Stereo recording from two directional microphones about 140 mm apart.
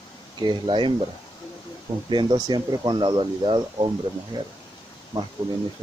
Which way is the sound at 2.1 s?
35° right (ahead or behind).